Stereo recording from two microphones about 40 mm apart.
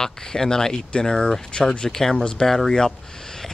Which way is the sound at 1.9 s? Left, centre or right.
Centre.